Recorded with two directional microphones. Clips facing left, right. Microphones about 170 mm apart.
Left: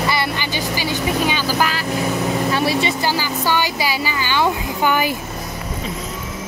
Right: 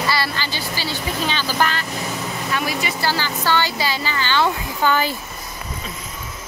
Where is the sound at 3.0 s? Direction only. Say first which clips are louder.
Left 2 dB; 15° left (ahead or behind).